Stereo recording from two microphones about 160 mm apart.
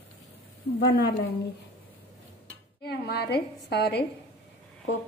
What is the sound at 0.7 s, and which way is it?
Speech, 80° left.